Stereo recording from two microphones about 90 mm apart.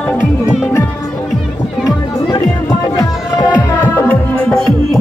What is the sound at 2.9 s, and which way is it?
Music, 45° left (ahead or behind).